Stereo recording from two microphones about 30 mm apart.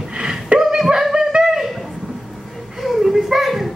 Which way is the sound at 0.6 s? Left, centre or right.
Centre.